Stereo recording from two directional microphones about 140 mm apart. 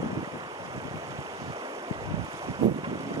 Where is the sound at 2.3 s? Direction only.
30° right (ahead or behind).